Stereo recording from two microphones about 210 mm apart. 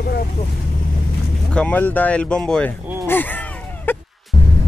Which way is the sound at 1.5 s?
5° left (ahead or behind).